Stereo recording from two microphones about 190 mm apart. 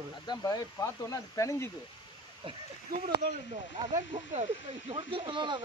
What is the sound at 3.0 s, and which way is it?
Speech, 50° right (ahead or behind).